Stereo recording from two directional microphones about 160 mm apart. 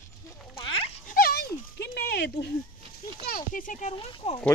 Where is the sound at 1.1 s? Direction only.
70° left (ahead or behind); by 2.5 s 90° left.